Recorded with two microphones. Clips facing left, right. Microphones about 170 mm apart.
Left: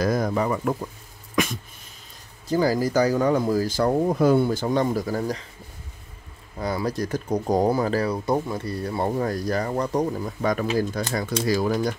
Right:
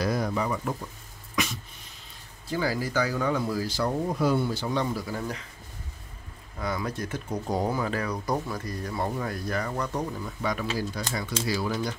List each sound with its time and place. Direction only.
0.0 s speech: 45° left (ahead or behind)
1.3 s a sound: 50° left (ahead or behind)
2.4 s speech: 40° left (ahead or behind)
6.6 s speech: 35° left (ahead or behind)